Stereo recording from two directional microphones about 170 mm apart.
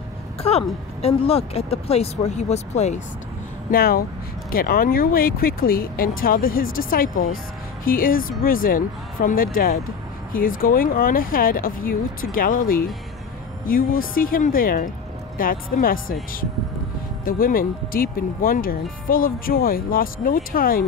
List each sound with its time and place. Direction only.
0.4 s speech: 35° left (ahead or behind)
3.7 s speech: 60° left (ahead or behind)